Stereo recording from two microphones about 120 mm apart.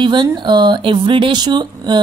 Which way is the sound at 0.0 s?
40° right (ahead or behind).